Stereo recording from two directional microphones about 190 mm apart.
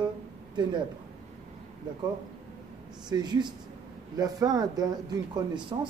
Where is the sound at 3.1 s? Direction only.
20° right (ahead or behind).